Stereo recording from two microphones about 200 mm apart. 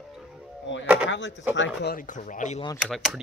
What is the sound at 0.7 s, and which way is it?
Speech, 65° left (ahead or behind).